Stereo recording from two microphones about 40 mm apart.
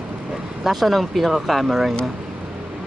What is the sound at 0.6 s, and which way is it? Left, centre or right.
Speech, centre.